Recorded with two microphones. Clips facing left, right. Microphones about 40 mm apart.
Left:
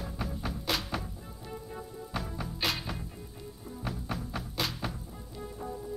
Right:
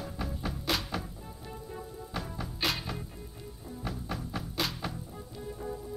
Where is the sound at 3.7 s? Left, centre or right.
Left.